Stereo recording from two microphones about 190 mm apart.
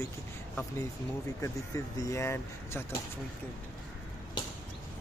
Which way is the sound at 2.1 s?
15° left (ahead or behind).